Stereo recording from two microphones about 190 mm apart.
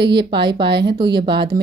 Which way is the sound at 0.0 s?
60° right (ahead or behind).